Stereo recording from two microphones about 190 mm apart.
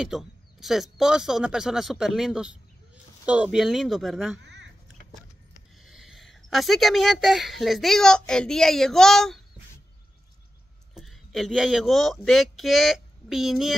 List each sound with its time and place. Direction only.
0.0 s speech: centre (ahead or behind)
4.4 s a sound: 65° right (ahead or behind)
5.8 s speech: centre (ahead or behind)
11.0 s speech: centre (ahead or behind)